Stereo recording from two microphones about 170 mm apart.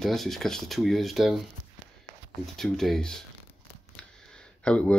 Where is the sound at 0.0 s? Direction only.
Centre (ahead or behind).